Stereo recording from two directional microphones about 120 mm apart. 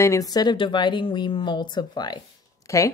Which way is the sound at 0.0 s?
30° left (ahead or behind).